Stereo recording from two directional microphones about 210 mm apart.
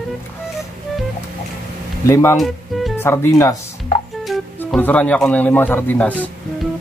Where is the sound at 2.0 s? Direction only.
15° left (ahead or behind).